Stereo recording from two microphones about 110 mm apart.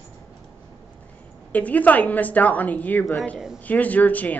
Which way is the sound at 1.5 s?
15° left (ahead or behind).